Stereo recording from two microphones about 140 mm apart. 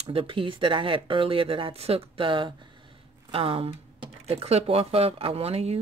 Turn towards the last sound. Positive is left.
turn(degrees=-45)  # may be behind; listen again after turning